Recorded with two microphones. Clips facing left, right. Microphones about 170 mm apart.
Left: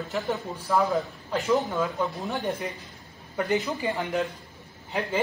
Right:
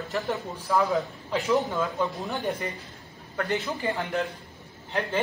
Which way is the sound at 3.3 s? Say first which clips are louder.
Left 2 dB; 15° left (ahead or behind).